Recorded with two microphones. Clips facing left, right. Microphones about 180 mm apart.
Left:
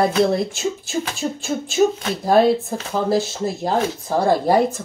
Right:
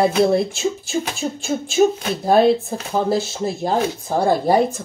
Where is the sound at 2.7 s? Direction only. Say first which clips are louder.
Even; centre (ahead or behind).